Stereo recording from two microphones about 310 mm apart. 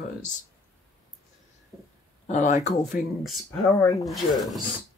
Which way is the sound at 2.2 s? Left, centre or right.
Left.